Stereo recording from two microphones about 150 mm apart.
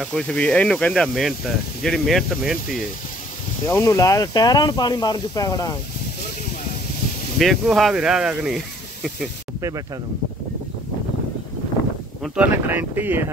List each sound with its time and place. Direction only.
0.3 s speech: 10° left (ahead or behind)
3.6 s speech: 15° left (ahead or behind)
7.3 s speech: centre (ahead or behind)
9.6 s speech: 20° right (ahead or behind)
12.2 s speech: 10° right (ahead or behind)